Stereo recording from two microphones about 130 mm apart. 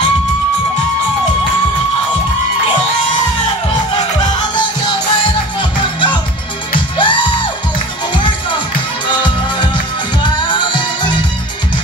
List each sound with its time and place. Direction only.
7.0 s music: 35° left (ahead or behind)